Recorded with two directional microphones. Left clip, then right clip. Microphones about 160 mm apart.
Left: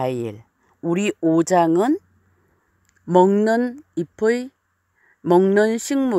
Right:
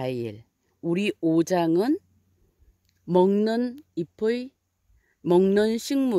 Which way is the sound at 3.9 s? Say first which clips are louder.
Left 6 dB; 10° right (ahead or behind).